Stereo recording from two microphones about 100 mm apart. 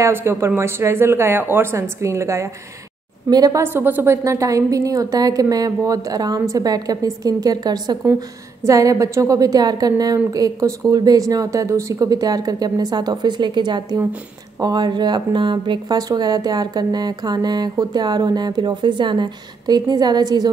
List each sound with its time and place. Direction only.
0.0 s a woman's voice: 25° right (ahead or behind)
3.3 s a woman's voice: 40° right (ahead or behind)
3.6 s a woman's voice: 20° right (ahead or behind); by 20.4 s 45° right (ahead or behind)